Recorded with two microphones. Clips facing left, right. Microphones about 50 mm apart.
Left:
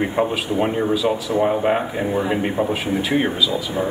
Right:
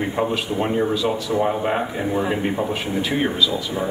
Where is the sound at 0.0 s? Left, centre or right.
Centre.